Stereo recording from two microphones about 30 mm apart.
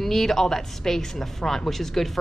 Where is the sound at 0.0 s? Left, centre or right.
Centre.